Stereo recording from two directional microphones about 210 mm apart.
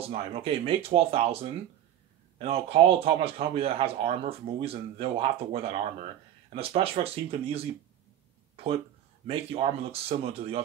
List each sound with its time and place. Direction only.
0.0 s speech: 30° right (ahead or behind)
9.3 s speech: 30° right (ahead or behind)